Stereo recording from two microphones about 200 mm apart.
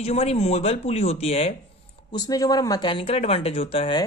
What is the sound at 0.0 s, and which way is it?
Speech, 30° left (ahead or behind).